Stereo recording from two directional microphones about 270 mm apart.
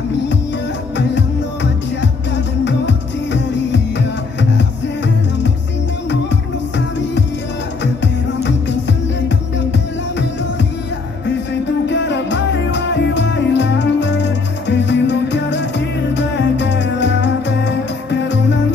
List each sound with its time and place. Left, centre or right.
0.9 s music: left
8.8 s music: left
11.9 s music: left